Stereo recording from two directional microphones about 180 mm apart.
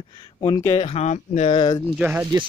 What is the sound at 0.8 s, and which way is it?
Speech, 35° left (ahead or behind).